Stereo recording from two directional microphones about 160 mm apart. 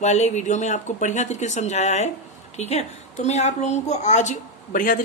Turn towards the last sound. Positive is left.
turn(degrees=55)  # may be behind; listen again after turning